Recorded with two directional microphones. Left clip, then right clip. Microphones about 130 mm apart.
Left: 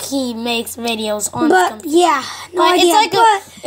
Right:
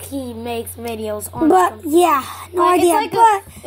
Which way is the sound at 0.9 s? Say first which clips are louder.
Left 2 dB; 40° left (ahead or behind).